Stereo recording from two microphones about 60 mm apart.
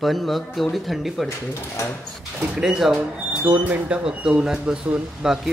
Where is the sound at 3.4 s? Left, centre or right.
Right.